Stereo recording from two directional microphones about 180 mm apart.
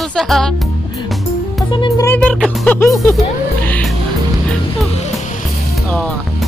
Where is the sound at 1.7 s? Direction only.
25° left (ahead or behind).